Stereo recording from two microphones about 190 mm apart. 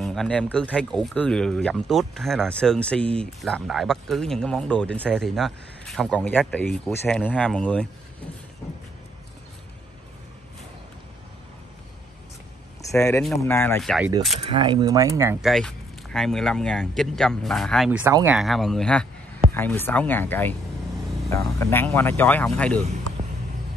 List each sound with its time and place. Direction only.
0.0 s speech: centre (ahead or behind)
12.9 s speech: 15° left (ahead or behind)
13.7 s speech: centre (ahead or behind)
14.4 s speech: 25° right (ahead or behind)
15.4 s speech: centre (ahead or behind)
18.4 s speech: centre (ahead or behind)
21.5 s speech: 10° left (ahead or behind)